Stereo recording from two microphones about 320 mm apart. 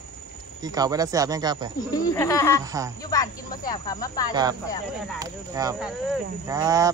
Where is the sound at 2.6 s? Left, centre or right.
Centre.